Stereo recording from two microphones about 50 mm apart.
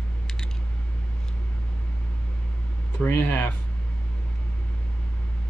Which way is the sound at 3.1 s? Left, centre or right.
Left.